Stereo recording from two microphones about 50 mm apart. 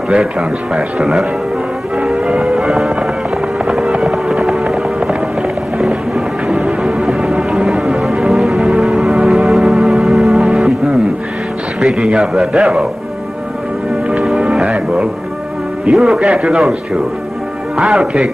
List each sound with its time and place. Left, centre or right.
0.1 s a man's voice: centre
2.1 s music: centre
2.4 s music: centre
10.4 s music: centre
11.9 s a man's voice: centre
14.2 s music: centre
15.9 s a man's voice: centre
17.7 s a man's voice: centre